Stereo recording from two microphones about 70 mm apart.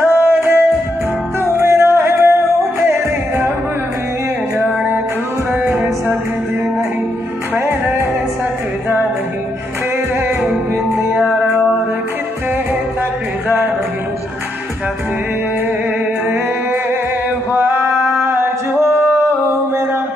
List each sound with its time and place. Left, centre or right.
0.1 s music: right
4.6 s music: right
10.9 s music: right
17.5 s male singing: right